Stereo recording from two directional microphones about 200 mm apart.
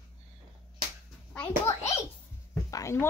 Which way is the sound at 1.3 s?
10° left (ahead or behind).